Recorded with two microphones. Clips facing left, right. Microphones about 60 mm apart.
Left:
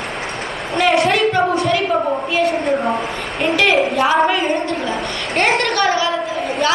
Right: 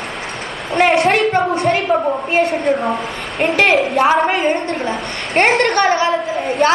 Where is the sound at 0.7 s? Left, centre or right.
Right.